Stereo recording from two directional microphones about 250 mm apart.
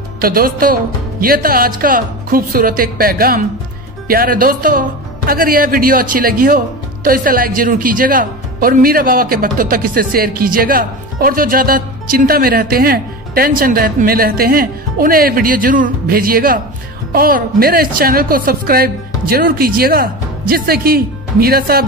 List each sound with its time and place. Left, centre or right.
0.2 s speech: right